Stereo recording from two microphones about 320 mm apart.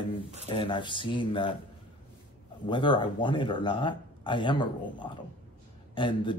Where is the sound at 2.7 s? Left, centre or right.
Centre.